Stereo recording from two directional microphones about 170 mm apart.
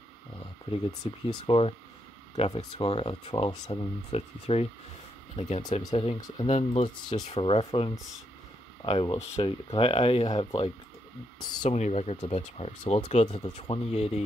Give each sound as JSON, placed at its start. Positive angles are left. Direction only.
{"t": 0.7, "sound": "speech", "side_deg": 30}
{"t": 5.6, "sound": "speech", "side_deg": 25}
{"t": 11.7, "sound": "speech", "side_deg": 40}